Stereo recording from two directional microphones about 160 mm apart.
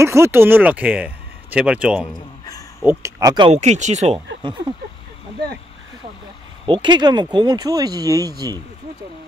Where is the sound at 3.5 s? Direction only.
45° right (ahead or behind).